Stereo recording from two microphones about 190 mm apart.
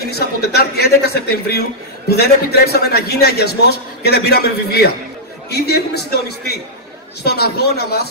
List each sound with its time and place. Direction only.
0.5 s a man's voice: 55° left (ahead or behind)